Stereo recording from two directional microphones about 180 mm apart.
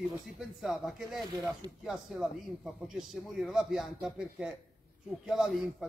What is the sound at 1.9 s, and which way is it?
Speech, 5° right (ahead or behind).